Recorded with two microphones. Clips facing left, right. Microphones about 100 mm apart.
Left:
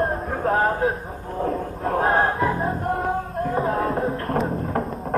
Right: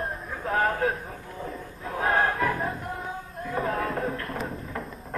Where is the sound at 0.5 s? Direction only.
30° left (ahead or behind).